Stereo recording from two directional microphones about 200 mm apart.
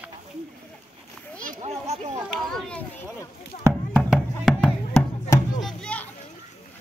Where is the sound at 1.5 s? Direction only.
30° right (ahead or behind).